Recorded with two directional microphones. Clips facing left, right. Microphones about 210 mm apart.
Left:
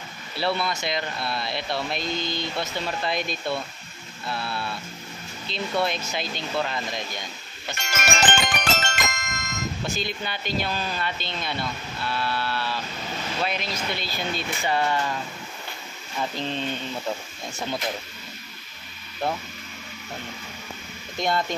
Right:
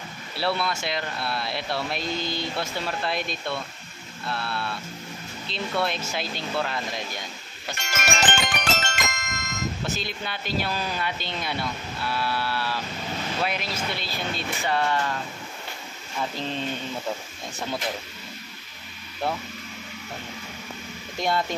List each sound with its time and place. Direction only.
0.4 s speech: 5° right (ahead or behind)
7.9 s music: 50° left (ahead or behind)
9.8 s speech: centre (ahead or behind)
16.2 s speech: 5° right (ahead or behind)
21.2 s speech: 10° right (ahead or behind)